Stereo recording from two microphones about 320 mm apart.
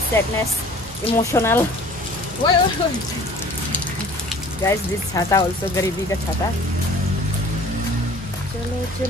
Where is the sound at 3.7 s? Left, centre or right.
Centre.